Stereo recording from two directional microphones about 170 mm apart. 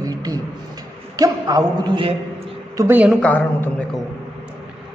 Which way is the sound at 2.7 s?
20° right (ahead or behind).